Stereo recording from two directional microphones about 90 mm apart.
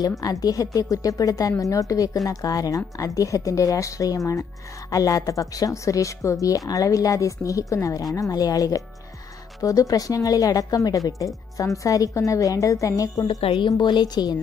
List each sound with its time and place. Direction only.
0.2 s a woman's voice: 45° left (ahead or behind)
13.4 s a woman's voice: 90° left
13.7 s a woman's voice: 55° left (ahead or behind)